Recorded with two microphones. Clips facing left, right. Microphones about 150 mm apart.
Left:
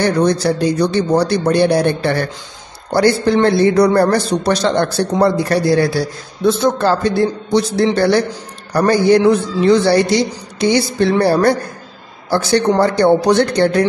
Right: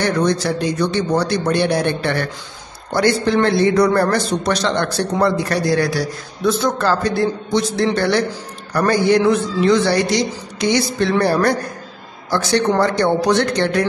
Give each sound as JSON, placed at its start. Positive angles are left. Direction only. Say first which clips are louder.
{"t": 0.0, "sound": "a man's voice", "louder": "left 3 dB", "side_deg": 35}